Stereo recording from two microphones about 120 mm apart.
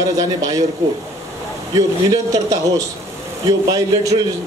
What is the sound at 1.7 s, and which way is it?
Speech, 30° right (ahead or behind).